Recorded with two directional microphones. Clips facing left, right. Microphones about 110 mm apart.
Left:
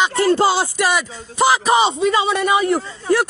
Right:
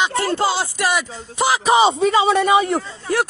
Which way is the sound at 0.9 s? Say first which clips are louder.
Left 1 dB; 10° right (ahead or behind).